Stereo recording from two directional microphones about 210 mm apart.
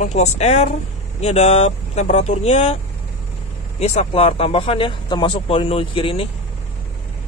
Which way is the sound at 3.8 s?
30° left (ahead or behind).